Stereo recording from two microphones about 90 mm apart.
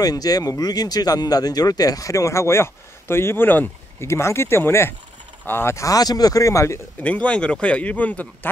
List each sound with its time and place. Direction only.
0.0 s speech: 45° left (ahead or behind)
7.0 s speech: 15° left (ahead or behind)